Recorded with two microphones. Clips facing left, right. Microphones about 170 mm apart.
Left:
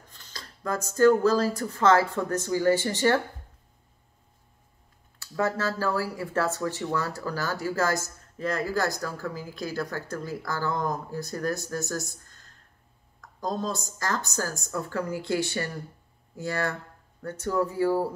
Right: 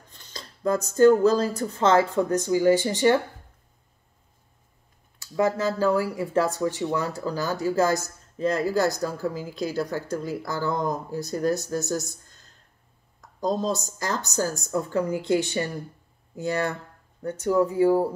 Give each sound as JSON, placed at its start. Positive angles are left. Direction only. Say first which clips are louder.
{"t": 0.2, "sound": "speech", "louder": "right 9 dB", "side_deg": -25}
{"t": 5.2, "sound": "speech", "louder": "right 4 dB", "side_deg": -15}
{"t": 13.4, "sound": "speech", "louder": "right 5 dB", "side_deg": -20}